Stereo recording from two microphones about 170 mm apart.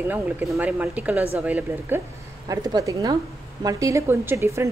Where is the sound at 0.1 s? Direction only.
10° right (ahead or behind).